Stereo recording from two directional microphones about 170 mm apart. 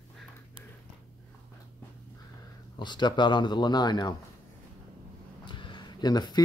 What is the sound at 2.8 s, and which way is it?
Speech, 25° left (ahead or behind).